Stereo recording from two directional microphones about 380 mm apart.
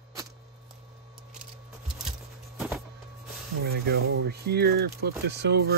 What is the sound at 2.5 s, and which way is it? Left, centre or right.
Printer, centre.